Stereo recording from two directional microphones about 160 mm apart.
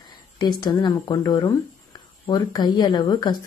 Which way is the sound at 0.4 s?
25° left (ahead or behind).